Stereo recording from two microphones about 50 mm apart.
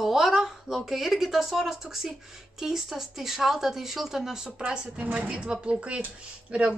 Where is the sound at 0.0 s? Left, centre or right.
Centre.